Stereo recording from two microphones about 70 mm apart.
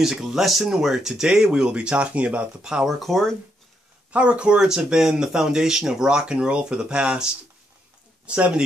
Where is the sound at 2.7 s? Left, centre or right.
Centre.